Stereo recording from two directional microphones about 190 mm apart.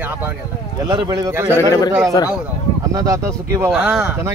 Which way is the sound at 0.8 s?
20° right (ahead or behind).